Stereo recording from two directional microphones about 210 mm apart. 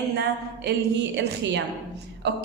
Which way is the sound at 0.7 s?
55° right (ahead or behind).